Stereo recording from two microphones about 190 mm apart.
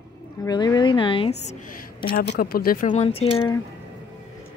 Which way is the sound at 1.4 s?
40° left (ahead or behind).